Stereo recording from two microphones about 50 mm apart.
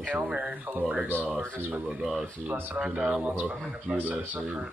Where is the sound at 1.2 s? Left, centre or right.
Right.